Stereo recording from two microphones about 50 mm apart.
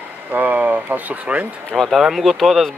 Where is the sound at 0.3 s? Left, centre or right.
Right.